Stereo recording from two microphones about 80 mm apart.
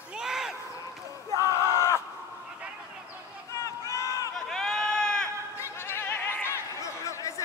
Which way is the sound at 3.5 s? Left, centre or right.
Left.